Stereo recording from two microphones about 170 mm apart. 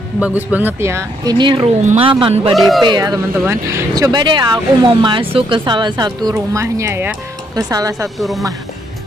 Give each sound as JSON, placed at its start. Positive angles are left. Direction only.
{"t": 0.2, "sound": "speech", "side_deg": -10}
{"t": 2.5, "sound": "speech", "side_deg": 0}
{"t": 2.8, "sound": "speech", "side_deg": -25}
{"t": 8.2, "sound": "speech", "side_deg": 0}